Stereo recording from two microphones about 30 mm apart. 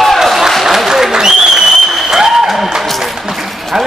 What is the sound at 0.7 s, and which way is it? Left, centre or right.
Applause, centre.